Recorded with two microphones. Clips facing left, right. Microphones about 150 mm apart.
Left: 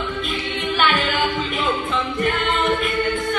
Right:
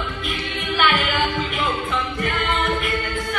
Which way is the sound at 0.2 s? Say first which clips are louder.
Left 3 dB; 20° left (ahead or behind).